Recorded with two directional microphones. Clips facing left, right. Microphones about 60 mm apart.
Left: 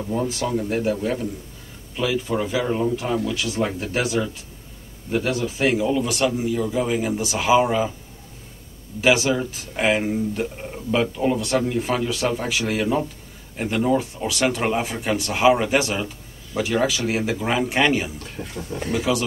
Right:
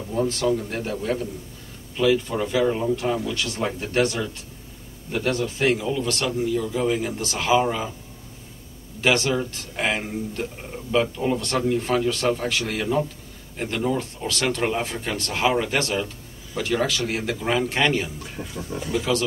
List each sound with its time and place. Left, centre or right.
0.1 s speech: centre
9.0 s speech: centre
18.5 s speech: left